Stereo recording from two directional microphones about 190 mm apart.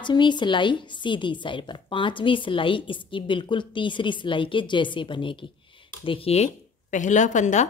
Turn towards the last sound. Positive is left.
turn(degrees=40)  # may be behind; listen again after turning